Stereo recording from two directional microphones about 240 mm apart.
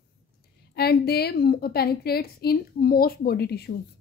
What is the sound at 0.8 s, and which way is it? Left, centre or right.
A woman's voice, left.